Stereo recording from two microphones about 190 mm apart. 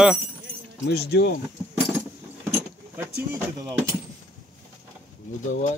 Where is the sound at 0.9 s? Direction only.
60° left (ahead or behind).